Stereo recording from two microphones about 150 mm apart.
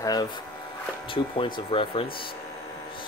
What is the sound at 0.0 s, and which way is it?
Speech, 25° left (ahead or behind).